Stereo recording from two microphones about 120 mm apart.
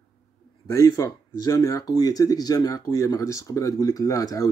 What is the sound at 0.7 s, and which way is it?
Speech, 25° left (ahead or behind).